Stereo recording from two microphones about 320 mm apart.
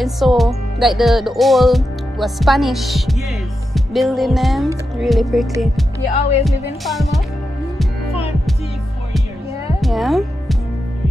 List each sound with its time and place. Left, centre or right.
0.0 s music: centre
3.7 s speech: centre
6.1 s speech: centre
6.4 s music: centre
9.8 s music: centre